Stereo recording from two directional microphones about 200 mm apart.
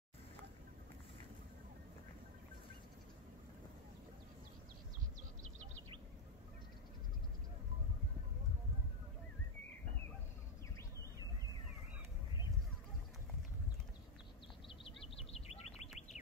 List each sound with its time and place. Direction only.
14.7 s bird: 30° left (ahead or behind)